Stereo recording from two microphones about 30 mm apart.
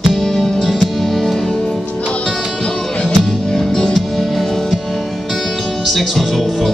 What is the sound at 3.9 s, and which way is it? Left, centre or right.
Music, centre.